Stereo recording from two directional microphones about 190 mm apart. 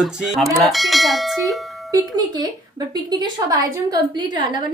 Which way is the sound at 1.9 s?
20° right (ahead or behind).